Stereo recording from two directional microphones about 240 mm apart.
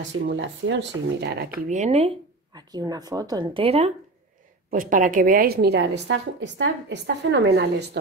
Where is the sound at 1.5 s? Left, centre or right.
Right.